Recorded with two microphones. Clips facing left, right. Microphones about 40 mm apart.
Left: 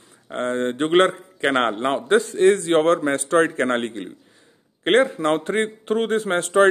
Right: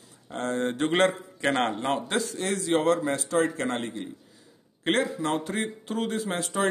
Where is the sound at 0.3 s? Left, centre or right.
Left.